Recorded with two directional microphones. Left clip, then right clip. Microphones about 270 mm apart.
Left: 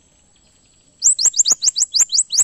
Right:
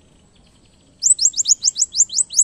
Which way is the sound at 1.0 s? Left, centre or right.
Centre.